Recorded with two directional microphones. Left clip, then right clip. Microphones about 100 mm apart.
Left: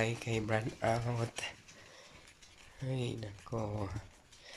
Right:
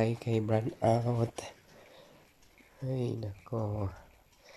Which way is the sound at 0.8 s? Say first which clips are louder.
Right 7 dB; 65° right (ahead or behind).